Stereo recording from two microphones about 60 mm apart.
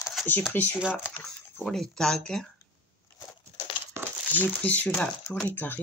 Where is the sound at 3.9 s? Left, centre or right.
Right.